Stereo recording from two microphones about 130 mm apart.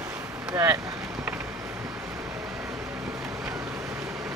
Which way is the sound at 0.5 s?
25° right (ahead or behind).